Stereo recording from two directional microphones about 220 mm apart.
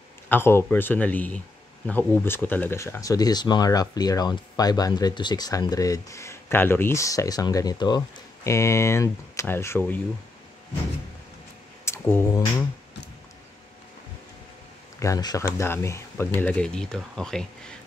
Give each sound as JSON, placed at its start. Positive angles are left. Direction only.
{"t": 0.3, "sound": "speech", "side_deg": 10}
{"t": 11.8, "sound": "a sound", "side_deg": 10}
{"t": 15.0, "sound": "speech", "side_deg": 15}